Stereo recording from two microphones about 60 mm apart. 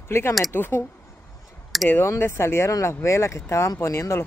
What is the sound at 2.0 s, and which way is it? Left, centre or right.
Speech, left.